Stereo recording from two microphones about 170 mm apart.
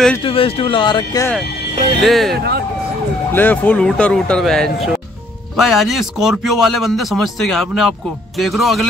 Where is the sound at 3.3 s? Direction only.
10° left (ahead or behind).